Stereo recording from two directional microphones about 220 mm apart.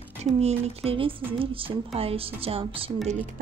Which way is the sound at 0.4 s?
25° right (ahead or behind).